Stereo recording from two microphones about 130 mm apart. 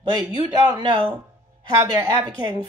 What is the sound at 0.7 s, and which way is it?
Speech, 35° right (ahead or behind).